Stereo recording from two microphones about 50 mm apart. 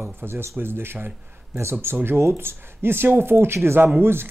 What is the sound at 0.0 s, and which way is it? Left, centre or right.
Speech, right.